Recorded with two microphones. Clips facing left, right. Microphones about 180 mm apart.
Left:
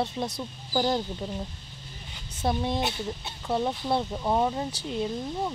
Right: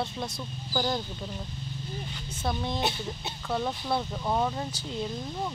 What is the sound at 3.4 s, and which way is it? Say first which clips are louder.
Speech: left 3 dB; 20° left (ahead or behind).